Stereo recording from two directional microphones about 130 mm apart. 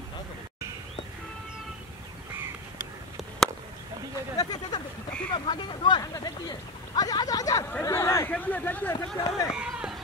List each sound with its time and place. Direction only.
4.4 s speech: 30° left (ahead or behind); by 8.9 s 15° left (ahead or behind)
8.9 s speech: 25° left (ahead or behind)
9.5 s run: 5° right (ahead or behind)